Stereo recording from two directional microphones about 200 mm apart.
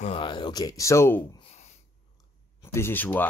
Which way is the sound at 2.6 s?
10° left (ahead or behind).